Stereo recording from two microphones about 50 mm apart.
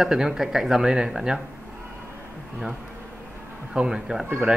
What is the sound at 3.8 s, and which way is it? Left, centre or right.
Speech, centre.